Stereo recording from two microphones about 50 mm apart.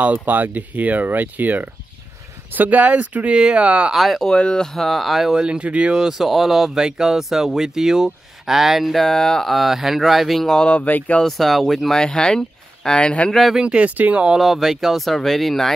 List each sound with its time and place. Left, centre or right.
0.0 s speech: right
3.9 s speech: centre
4.3 s speech: centre
5.4 s speech: right
5.9 s speech: centre
10.5 s speech: left
11.2 s speech: centre
11.9 s speech: centre
13.6 s speech: centre
13.8 s speech: right
14.4 s speech: centre